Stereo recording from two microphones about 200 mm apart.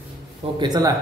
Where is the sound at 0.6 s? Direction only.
20° right (ahead or behind).